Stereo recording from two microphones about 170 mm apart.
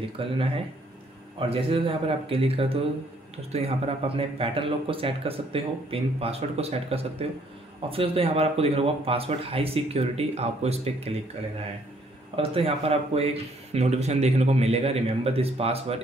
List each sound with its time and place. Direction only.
0.2 s speech: 30° right (ahead or behind)
1.4 s speech: 30° right (ahead or behind)
12.4 s speech: 35° right (ahead or behind)